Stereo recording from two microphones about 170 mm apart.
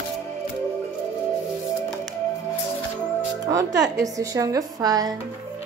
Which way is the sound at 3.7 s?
90° right.